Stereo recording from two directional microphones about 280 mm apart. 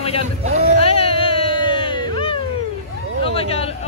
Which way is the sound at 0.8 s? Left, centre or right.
Left.